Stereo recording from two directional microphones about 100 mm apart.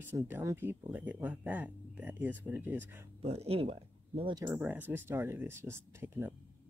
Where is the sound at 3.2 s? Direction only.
90° right; by 4.3 s 70° right (ahead or behind).